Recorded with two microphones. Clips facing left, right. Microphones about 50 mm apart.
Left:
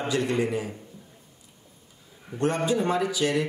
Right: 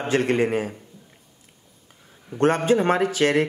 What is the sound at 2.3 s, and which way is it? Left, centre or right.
A man's voice, right.